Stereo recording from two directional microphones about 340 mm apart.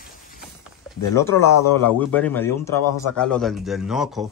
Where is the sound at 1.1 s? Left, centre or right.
Centre.